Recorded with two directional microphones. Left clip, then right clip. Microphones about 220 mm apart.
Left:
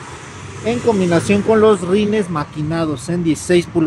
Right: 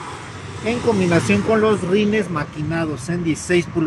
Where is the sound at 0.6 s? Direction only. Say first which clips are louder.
Left 3 dB; 15° left (ahead or behind).